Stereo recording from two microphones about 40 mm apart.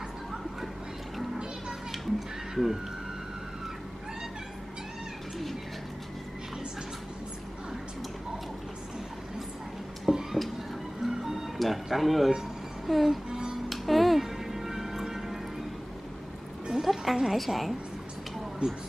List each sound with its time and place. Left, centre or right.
1.9 s music: centre
10.0 s a sound: centre
11.5 s speech: centre
12.8 s music: centre
13.3 s music: centre
13.7 s music: centre
16.8 s music: centre
18.6 s speech: right